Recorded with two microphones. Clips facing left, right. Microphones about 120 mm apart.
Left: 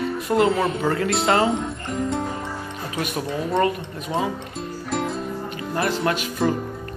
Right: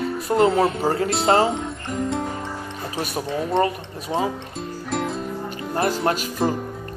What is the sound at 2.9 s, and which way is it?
Speech, 35° right (ahead or behind).